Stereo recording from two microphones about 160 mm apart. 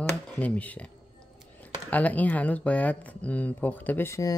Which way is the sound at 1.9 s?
10° left (ahead or behind).